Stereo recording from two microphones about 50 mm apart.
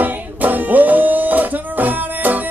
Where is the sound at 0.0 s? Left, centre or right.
Right.